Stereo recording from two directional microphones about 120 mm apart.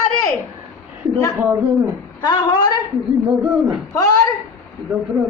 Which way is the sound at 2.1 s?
40° left (ahead or behind).